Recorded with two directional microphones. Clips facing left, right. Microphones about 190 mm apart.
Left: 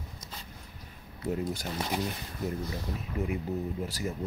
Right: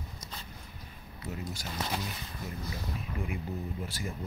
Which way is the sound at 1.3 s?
55° left (ahead or behind).